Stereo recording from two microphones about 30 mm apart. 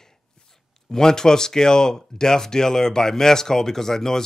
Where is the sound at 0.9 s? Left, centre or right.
Left.